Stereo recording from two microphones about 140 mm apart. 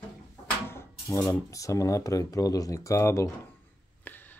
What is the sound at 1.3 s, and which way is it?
Speech, 20° left (ahead or behind).